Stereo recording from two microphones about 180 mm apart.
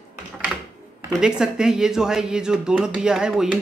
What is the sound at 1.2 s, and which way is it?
Speech, 5° right (ahead or behind).